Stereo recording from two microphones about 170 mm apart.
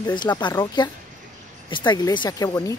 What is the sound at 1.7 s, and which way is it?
Speech, 25° left (ahead or behind).